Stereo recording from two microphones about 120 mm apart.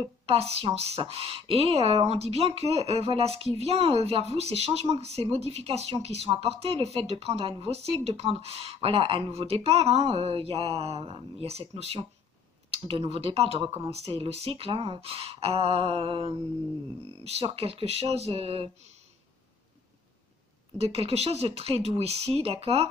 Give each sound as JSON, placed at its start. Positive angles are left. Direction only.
{"t": 0.0, "sound": "speech", "side_deg": -55}
{"t": 17.2, "sound": "speech", "side_deg": -60}
{"t": 20.7, "sound": "speech", "side_deg": -60}